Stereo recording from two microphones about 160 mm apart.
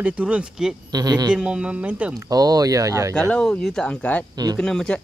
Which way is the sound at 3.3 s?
5° left (ahead or behind).